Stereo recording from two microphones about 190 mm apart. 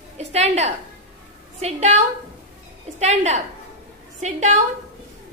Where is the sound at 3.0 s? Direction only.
35° right (ahead or behind).